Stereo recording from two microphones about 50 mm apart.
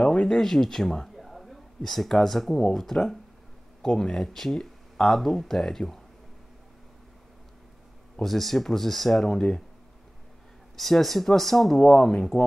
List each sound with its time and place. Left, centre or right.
0.0 s a sound: left
0.3 s a man's voice: centre
8.2 s speech: centre
10.8 s speech: centre